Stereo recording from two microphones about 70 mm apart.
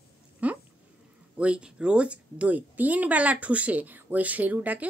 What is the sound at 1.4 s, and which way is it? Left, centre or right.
A woman's voice, centre.